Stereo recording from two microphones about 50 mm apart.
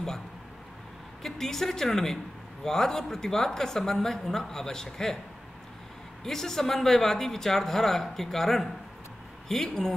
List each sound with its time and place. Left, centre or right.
1.2 s a woman's voice: centre
6.2 s a woman's voice: centre